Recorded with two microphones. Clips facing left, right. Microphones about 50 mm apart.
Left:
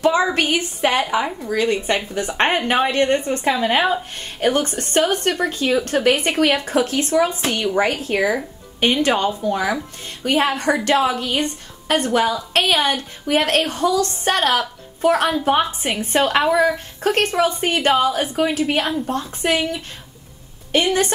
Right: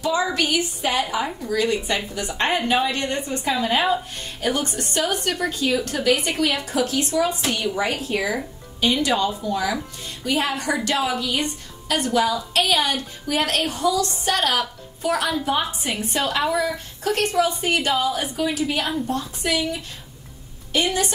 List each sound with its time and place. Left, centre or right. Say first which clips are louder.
0.0 s speech: left 5 dB; left
8.2 s speech: left 9 dB; centre
8.7 s a woman's voice: left 3 dB; left